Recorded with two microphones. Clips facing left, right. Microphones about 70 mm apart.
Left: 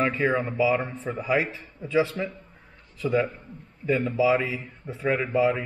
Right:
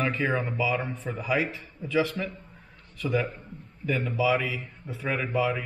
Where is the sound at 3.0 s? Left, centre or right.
Centre.